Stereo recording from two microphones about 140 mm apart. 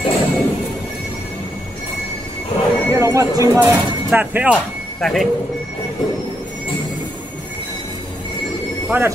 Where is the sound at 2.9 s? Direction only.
20° right (ahead or behind).